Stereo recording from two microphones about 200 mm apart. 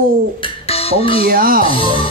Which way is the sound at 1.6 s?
25° left (ahead or behind).